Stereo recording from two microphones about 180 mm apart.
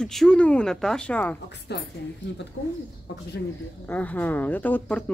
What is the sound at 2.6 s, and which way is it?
Speech, 90° left.